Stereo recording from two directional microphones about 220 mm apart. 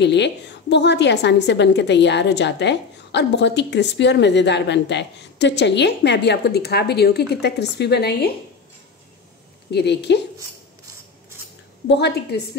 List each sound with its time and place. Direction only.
0.0 s a woman's voice: 50° left (ahead or behind)
9.7 s a woman's voice: 50° left (ahead or behind)
11.9 s a woman's voice: 50° left (ahead or behind)